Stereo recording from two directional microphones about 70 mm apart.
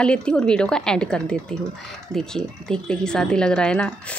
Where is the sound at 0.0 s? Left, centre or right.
Centre.